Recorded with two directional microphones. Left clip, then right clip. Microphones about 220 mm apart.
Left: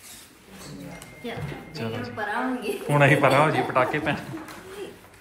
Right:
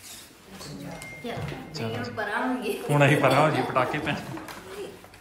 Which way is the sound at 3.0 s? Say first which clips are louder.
Left 2 dB; 10° right (ahead or behind).